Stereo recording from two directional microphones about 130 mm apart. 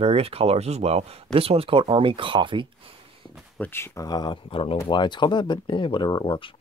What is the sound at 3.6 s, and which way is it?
Speech, 20° left (ahead or behind).